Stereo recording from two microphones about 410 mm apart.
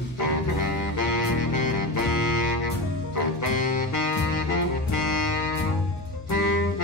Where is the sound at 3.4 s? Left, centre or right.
Right.